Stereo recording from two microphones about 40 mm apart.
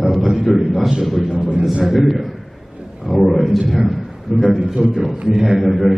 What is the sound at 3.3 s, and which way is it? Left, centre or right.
Speech, centre.